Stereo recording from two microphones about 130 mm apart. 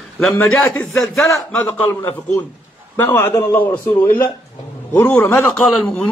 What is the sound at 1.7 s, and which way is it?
A man's voice, 15° left (ahead or behind).